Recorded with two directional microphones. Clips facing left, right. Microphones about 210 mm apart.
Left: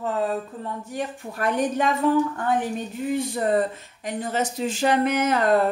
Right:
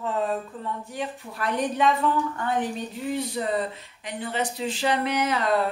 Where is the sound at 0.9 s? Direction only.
45° left (ahead or behind).